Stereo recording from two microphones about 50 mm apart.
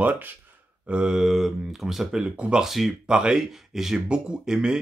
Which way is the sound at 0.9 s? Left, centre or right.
Centre.